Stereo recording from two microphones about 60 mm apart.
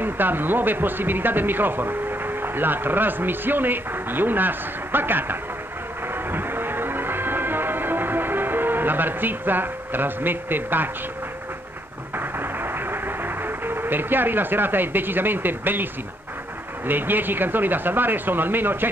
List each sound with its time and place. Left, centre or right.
0.0 s speech: right
6.3 s music: right
12.2 s music: right
16.8 s speech: right